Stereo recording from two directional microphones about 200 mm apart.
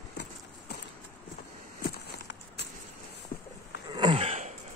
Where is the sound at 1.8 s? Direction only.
55° left (ahead or behind).